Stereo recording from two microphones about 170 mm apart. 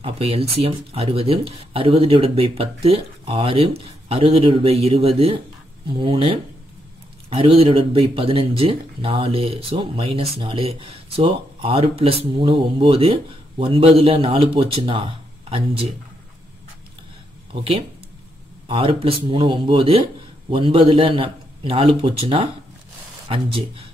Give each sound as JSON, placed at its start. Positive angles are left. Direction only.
{"t": 0.0, "sound": "speech", "side_deg": -35}
{"t": 17.5, "sound": "speech", "side_deg": -30}